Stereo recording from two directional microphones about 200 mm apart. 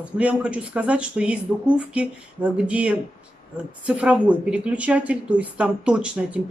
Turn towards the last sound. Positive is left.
turn(degrees=-5)  # may be behind; listen again after turning